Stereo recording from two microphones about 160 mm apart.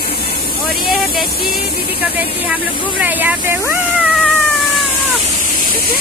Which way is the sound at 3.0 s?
10° right (ahead or behind).